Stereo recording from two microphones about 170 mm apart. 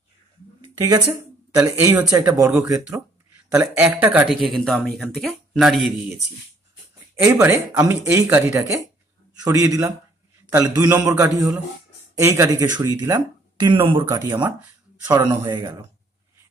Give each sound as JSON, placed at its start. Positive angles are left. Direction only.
{"t": 0.7, "sound": "speech", "side_deg": -20}
{"t": 7.2, "sound": "speech", "side_deg": -15}
{"t": 14.0, "sound": "speech", "side_deg": -15}